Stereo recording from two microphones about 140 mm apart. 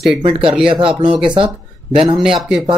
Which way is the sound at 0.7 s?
40° right (ahead or behind).